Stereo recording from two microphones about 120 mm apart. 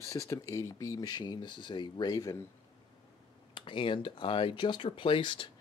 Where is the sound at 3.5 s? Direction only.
45° left (ahead or behind).